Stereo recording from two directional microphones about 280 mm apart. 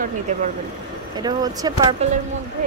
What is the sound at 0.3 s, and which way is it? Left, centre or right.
Speech, right.